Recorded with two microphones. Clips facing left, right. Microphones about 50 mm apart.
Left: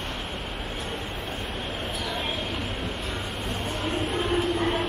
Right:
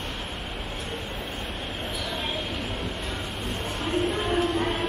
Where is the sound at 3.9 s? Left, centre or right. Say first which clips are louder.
Right 2 dB; centre.